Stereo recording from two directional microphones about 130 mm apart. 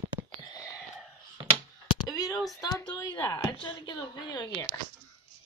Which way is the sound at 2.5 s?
30° left (ahead or behind).